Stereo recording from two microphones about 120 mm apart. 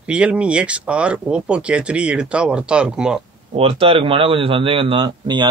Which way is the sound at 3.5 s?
50° right (ahead or behind).